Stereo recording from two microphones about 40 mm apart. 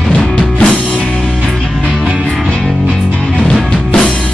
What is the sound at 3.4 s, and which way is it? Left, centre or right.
Music, centre.